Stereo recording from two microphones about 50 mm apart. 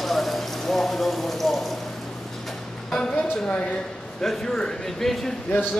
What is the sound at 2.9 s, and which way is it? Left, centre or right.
Speech, centre.